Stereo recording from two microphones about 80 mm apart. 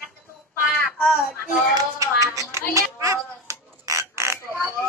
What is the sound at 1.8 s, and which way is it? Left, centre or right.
Hands, right.